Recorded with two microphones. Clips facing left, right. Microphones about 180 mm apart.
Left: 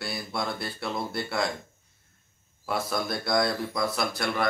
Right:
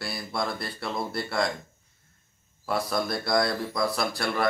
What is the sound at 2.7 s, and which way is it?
Speech, centre (ahead or behind).